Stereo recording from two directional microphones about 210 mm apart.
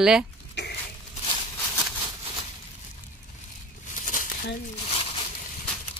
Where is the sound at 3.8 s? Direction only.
35° left (ahead or behind).